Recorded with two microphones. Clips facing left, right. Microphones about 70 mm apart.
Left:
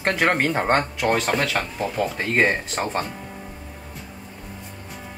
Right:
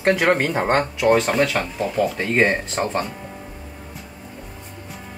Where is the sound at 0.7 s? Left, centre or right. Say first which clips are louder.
Right 4 dB; right.